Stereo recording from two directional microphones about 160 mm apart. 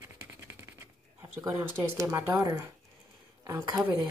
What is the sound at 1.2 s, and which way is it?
A woman's voice, 15° right (ahead or behind).